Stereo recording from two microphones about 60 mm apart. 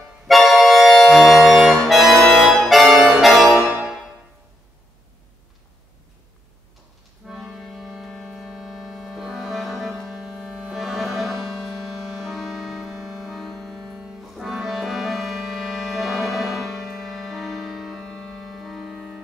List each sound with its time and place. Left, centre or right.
0.3 s accordion: centre
7.2 s accordion: centre
12.2 s music: centre